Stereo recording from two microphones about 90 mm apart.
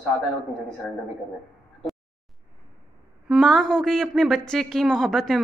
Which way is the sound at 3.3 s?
Centre (ahead or behind).